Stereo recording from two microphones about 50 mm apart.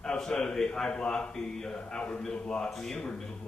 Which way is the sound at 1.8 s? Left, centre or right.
Left.